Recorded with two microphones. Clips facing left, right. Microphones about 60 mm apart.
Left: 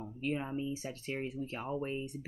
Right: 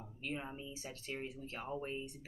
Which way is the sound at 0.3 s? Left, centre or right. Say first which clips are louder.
Left 7 dB; left.